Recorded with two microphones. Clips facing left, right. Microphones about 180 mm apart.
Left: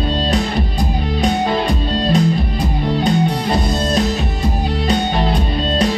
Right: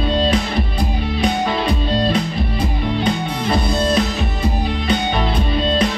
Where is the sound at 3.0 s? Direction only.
40° left (ahead or behind).